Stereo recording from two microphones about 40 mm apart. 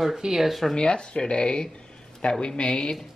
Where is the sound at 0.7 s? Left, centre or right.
Left.